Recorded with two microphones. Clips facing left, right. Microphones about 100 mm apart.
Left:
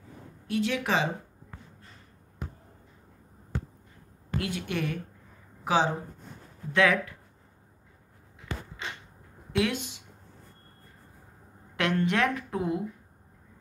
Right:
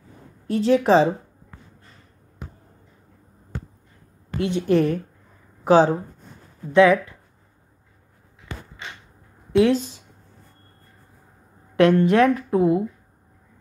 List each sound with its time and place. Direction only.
0.5 s speech: 35° right (ahead or behind)
4.4 s speech: 25° right (ahead or behind)
4.6 s speech: 35° right (ahead or behind)
6.7 s speech: 20° right (ahead or behind)
9.5 s speech: 35° right (ahead or behind)
12.0 s speech: 25° right (ahead or behind)